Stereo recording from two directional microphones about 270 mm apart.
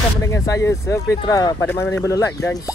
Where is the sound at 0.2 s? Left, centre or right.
Centre.